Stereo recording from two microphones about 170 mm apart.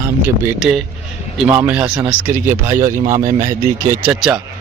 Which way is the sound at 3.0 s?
50° right (ahead or behind).